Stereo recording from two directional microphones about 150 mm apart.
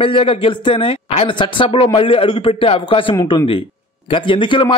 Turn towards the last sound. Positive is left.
turn(degrees=35)  # may be behind; listen again after turning